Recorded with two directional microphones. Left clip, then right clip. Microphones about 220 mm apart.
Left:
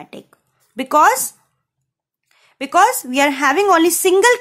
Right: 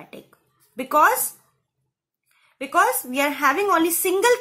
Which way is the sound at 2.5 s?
45° left (ahead or behind).